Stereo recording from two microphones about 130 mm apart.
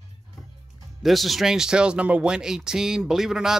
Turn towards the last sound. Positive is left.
turn(degrees=-5)  # may be behind; listen again after turning